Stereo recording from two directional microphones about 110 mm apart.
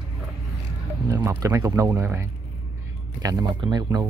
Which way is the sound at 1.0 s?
30° right (ahead or behind).